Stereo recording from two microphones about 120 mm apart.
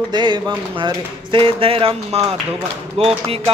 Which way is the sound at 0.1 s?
40° right (ahead or behind).